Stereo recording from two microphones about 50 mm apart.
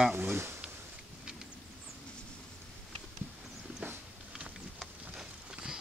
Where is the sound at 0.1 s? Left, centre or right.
Right.